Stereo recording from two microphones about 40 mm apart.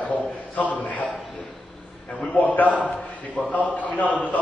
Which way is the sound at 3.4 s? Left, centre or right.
Left.